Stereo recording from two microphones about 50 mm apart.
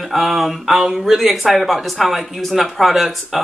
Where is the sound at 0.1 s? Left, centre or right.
Centre.